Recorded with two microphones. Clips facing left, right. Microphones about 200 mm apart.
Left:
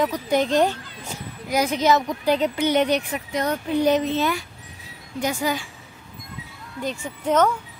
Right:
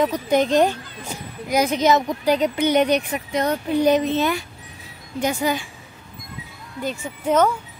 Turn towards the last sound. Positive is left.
turn(degrees=-10)  # may be behind; listen again after turning